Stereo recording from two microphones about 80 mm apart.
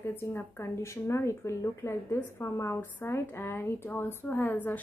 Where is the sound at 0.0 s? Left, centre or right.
Left.